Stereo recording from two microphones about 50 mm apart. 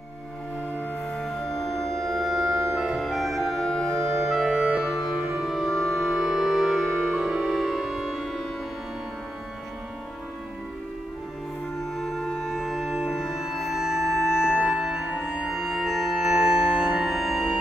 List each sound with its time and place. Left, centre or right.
1.1 s music: centre
2.7 s organ: centre
4.2 s music: centre
12.0 s music: centre
14.4 s music: centre